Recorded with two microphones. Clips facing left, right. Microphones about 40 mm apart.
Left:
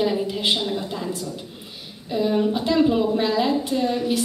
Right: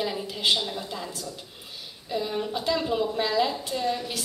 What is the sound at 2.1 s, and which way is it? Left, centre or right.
A woman's voice, centre.